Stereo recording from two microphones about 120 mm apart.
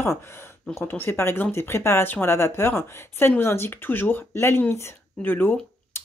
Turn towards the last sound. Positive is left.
turn(degrees=20)  # may be behind; listen again after turning